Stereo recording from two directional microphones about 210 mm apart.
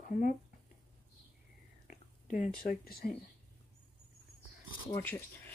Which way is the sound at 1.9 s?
40° left (ahead or behind).